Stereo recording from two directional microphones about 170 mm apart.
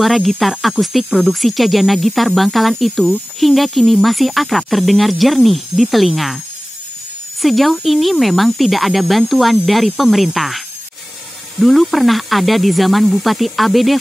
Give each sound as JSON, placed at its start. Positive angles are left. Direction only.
{"t": 0.0, "sound": "speech", "side_deg": 0}
{"t": 7.4, "sound": "speech", "side_deg": 0}
{"t": 11.6, "sound": "speech", "side_deg": 0}